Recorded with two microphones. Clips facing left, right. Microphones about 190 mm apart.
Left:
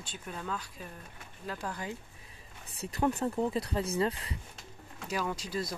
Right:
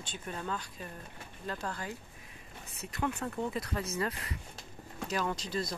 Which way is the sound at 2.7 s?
35° left (ahead or behind).